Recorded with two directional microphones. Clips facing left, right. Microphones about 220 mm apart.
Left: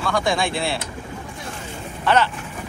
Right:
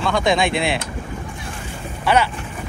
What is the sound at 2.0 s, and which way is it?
Speech, 10° right (ahead or behind).